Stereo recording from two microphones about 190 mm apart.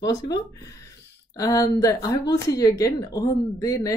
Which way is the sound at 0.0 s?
20° left (ahead or behind).